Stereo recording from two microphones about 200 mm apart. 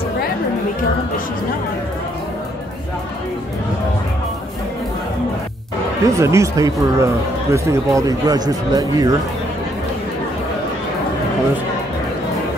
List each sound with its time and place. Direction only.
6.0 s speech: 15° right (ahead or behind)